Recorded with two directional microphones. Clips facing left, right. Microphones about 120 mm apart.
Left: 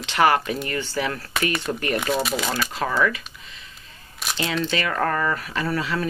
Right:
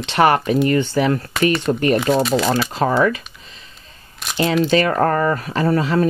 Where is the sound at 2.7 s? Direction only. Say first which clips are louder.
Right 5 dB; 35° right (ahead or behind).